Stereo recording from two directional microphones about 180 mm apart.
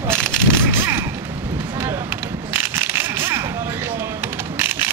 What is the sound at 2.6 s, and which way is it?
Zipper, 15° right (ahead or behind).